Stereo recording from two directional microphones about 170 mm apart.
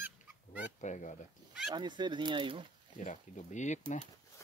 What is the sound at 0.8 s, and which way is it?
Speech, 45° left (ahead or behind).